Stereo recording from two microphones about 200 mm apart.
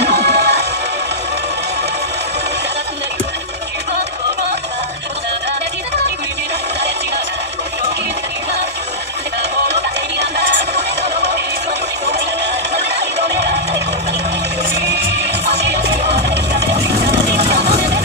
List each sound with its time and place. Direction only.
0.1 s music: 55° right (ahead or behind)
15.5 s music: 35° right (ahead or behind)